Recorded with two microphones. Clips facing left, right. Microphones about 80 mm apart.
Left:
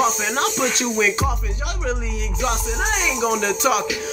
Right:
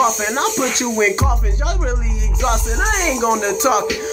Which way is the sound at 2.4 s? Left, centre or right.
Right.